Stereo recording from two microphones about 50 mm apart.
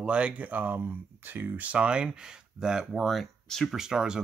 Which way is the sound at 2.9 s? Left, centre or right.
Centre.